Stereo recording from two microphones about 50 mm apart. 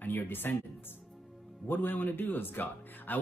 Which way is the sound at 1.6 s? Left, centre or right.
Left.